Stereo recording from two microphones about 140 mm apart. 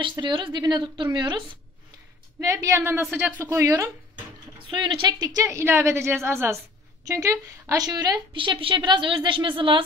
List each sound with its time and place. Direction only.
0.0 s a woman's voice: 35° right (ahead or behind)
2.4 s a woman's voice: 20° right (ahead or behind)
4.6 s a woman's voice: 35° right (ahead or behind)